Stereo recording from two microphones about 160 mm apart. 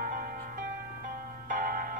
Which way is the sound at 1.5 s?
60° right (ahead or behind).